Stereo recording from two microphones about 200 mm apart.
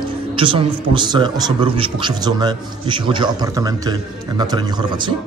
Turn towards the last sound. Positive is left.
turn(degrees=-25)  # may be behind; listen again after turning